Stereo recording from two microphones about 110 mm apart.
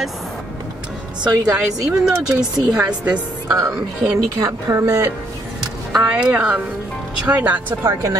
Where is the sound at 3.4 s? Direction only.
25° right (ahead or behind).